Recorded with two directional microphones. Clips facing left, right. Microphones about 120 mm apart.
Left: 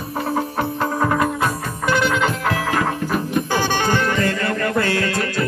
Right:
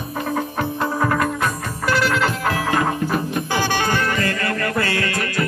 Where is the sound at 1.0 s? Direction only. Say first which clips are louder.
Left 1 dB; 10° left (ahead or behind).